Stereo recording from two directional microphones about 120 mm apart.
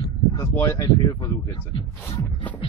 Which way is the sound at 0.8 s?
35° left (ahead or behind).